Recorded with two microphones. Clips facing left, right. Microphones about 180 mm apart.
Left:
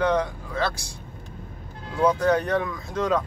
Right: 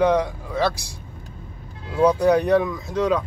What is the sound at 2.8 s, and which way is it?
Speech, centre (ahead or behind).